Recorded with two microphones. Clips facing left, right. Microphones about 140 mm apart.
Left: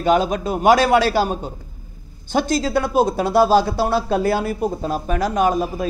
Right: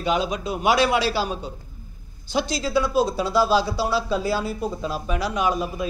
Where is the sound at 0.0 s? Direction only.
50° left (ahead or behind).